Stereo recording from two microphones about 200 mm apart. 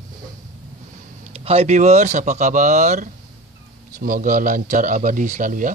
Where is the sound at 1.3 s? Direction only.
30° right (ahead or behind).